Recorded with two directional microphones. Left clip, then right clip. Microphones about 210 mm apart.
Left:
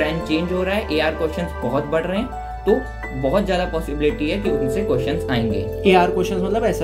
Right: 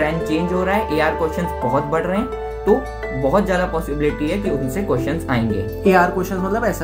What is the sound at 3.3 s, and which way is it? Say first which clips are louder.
Speech: right 2 dB; 20° right (ahead or behind).